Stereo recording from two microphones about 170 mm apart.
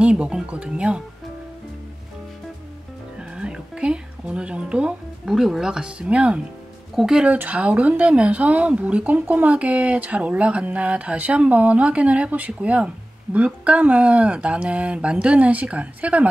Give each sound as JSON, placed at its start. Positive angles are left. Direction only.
{"t": 0.0, "sound": "speech", "side_deg": -5}
{"t": 3.2, "sound": "speech", "side_deg": -5}